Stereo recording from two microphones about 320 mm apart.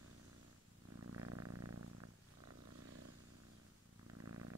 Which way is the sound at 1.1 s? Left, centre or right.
Right.